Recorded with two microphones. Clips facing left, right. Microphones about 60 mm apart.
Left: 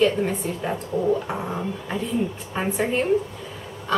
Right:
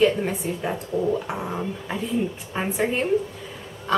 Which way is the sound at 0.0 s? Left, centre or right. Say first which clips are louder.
Even; centre.